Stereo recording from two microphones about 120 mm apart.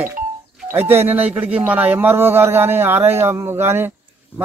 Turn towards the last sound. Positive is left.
turn(degrees=-20)  # may be behind; listen again after turning